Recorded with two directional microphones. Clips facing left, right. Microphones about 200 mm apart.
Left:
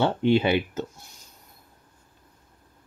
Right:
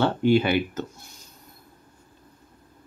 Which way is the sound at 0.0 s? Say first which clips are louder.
Right 1 dB; 25° left (ahead or behind).